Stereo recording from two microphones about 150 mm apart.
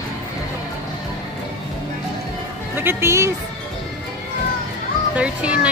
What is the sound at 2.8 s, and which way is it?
Speech, 15° right (ahead or behind).